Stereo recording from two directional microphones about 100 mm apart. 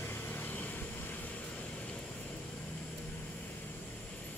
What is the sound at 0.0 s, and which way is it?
Vehicle, 20° left (ahead or behind).